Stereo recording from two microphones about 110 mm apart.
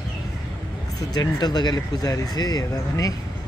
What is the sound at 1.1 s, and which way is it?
Speech, 40° left (ahead or behind).